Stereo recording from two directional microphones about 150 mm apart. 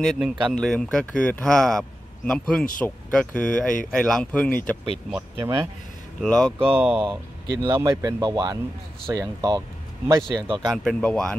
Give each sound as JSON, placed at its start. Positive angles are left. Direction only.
{"t": 0.2, "sound": "speech", "side_deg": -5}
{"t": 5.4, "sound": "speech", "side_deg": -20}
{"t": 6.2, "sound": "speech", "side_deg": 0}
{"t": 6.6, "sound": "speech", "side_deg": -15}
{"t": 10.7, "sound": "speech", "side_deg": 5}